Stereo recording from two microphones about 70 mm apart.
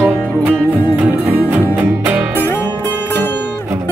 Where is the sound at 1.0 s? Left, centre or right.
Right.